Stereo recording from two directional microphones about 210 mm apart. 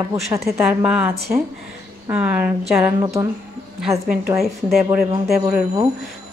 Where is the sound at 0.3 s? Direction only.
5° right (ahead or behind).